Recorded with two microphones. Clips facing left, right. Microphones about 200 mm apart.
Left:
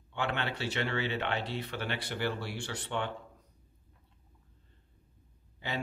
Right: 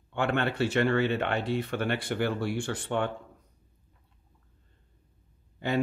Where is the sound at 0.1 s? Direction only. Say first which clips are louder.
Right 6 dB; 50° right (ahead or behind).